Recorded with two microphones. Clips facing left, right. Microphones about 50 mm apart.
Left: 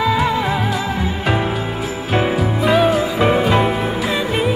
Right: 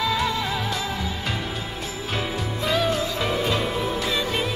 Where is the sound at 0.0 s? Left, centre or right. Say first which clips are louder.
Left 7 dB; centre.